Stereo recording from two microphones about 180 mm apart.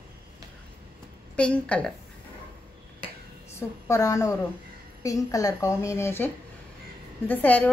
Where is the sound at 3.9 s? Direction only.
15° left (ahead or behind).